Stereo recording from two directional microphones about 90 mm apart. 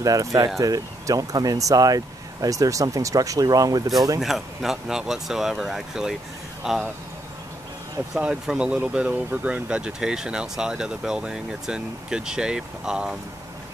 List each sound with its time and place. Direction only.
0.0 s speech: 40° right (ahead or behind)
4.2 s speech: centre (ahead or behind)
8.2 s speech: 10° right (ahead or behind)